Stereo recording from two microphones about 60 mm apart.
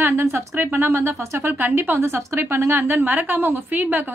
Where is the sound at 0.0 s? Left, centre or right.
Right.